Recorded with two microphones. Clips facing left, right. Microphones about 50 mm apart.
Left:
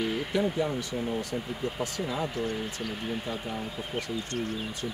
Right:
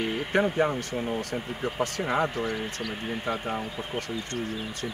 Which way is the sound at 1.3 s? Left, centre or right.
Right.